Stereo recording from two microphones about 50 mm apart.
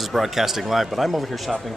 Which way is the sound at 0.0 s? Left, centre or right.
Centre.